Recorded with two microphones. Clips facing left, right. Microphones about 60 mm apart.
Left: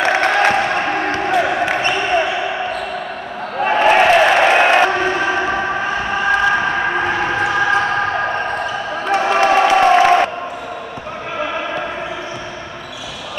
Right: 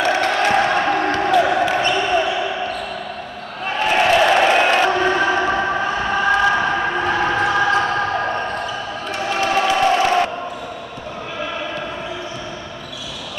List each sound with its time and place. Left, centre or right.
0.1 s crowd: left
0.5 s basketball bounce: centre
3.6 s a sound: left
9.2 s crowd: left